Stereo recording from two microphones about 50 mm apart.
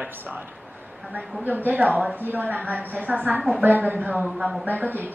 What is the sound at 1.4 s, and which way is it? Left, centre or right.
Speech, right.